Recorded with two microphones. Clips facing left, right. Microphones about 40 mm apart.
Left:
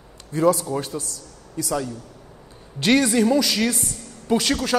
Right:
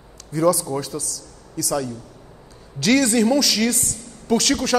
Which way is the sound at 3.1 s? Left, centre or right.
Centre.